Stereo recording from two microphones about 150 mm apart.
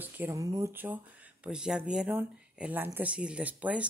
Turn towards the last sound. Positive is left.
turn(degrees=-10)  # may be behind; listen again after turning